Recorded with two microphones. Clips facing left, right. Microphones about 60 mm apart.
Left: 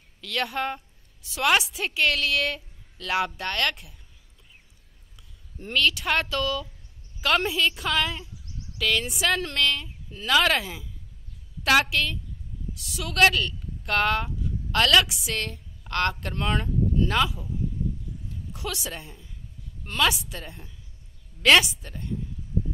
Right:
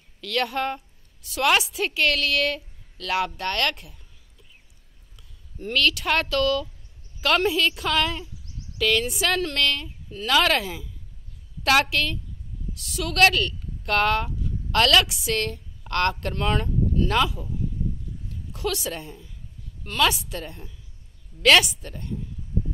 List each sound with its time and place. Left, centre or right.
0.2 s a woman's voice: centre
5.7 s a woman's voice: centre
18.5 s a woman's voice: centre